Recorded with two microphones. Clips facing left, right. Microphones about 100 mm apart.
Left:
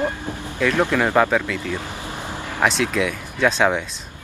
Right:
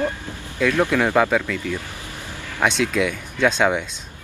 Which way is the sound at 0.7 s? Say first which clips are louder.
Even; 20° left (ahead or behind).